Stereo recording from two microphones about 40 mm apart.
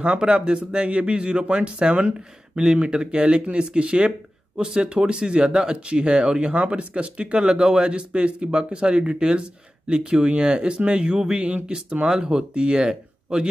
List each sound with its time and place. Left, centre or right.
0.0 s speech: right
2.6 s speech: centre